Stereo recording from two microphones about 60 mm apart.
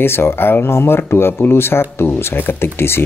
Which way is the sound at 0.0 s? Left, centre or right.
Left.